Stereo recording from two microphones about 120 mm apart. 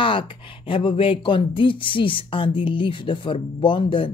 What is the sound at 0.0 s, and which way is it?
Speech, 45° left (ahead or behind).